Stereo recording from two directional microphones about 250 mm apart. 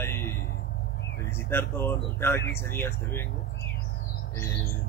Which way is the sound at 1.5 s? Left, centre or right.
Centre.